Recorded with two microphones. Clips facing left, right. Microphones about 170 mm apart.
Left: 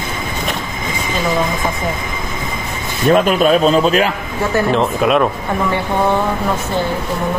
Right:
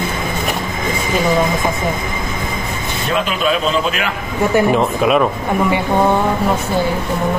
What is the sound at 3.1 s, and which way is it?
A man's voice, 45° left (ahead or behind).